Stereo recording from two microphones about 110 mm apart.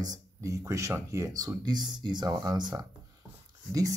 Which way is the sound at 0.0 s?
35° right (ahead or behind).